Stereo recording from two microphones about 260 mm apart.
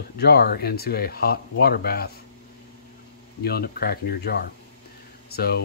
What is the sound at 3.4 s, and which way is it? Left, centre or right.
Speech, left.